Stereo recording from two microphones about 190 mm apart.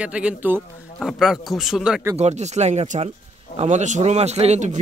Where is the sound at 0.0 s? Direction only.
5° right (ahead or behind).